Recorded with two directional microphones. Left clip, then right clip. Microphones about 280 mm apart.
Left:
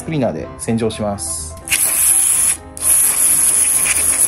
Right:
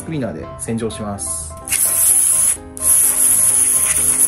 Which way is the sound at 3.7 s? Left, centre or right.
Centre.